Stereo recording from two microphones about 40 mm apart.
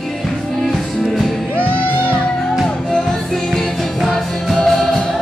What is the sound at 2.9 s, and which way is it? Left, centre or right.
Music, centre.